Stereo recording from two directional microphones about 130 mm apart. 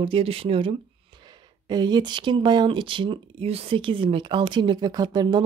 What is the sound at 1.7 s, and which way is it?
Speech, 35° right (ahead or behind).